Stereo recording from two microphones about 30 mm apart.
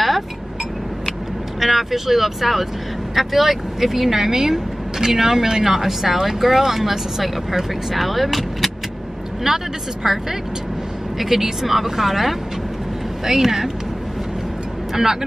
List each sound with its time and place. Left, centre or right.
1.6 s speech: centre
9.5 s speech: centre